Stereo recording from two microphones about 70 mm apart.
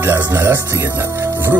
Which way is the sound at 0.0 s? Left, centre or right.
Right.